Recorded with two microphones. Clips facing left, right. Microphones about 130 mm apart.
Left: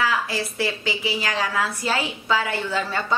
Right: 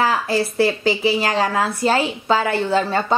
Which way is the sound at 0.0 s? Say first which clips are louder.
Right 5 dB; 35° right (ahead or behind).